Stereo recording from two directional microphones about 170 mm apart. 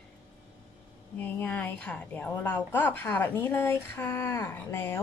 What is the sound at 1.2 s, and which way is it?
A woman's voice, 10° left (ahead or behind).